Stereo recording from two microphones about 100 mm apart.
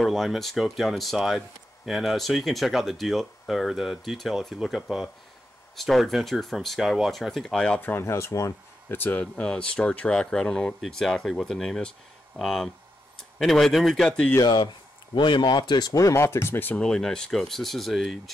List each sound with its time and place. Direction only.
0.0 s speech: centre (ahead or behind)
7.9 s speech: 25° left (ahead or behind)
9.2 s speech: 5° left (ahead or behind)
14.4 s speech: 45° left (ahead or behind); by 16.8 s 20° left (ahead or behind)
16.8 s speech: 5° left (ahead or behind)